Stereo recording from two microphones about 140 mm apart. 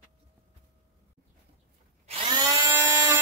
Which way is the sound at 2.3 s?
30° right (ahead or behind).